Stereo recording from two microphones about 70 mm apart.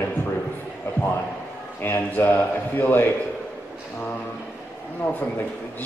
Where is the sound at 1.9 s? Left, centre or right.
Left.